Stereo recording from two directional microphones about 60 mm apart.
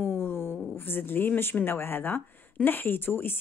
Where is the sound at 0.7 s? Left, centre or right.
Left.